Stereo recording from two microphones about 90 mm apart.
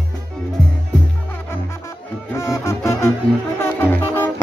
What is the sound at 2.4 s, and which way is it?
Music, 30° left (ahead or behind).